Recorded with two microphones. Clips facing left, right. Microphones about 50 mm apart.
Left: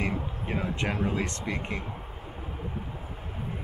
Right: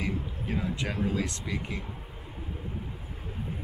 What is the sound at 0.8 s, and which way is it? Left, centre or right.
Speech, left.